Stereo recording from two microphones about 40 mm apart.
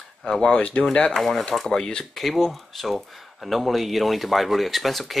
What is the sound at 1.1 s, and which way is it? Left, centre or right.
Speech, centre.